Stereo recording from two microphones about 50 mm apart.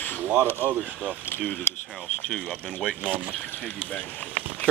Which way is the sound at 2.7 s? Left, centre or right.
Centre.